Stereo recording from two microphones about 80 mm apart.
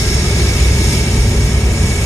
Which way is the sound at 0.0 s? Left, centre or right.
Left.